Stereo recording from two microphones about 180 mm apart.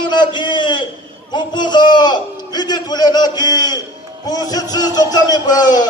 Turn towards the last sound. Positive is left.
turn(degrees=20)  # may be behind; listen again after turning